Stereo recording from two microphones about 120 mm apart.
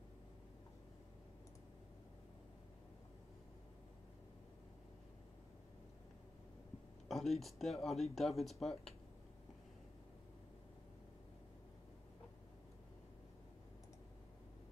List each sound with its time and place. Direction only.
7.1 s speech: centre (ahead or behind)